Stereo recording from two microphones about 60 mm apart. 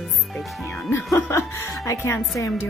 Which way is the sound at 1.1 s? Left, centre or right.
Left.